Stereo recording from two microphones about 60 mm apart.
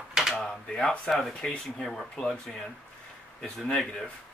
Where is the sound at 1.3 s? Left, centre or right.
Centre.